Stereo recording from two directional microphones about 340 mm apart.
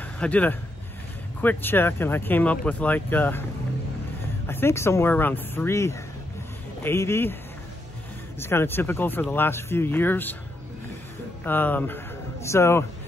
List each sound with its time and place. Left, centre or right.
0.0 s speech: centre
4.5 s speech: centre
8.4 s speech: centre
11.4 s speech: centre